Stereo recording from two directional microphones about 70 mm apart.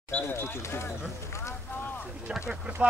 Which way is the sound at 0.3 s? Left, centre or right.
Left.